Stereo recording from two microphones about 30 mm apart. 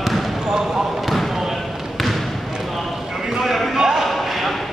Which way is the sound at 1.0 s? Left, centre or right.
Centre.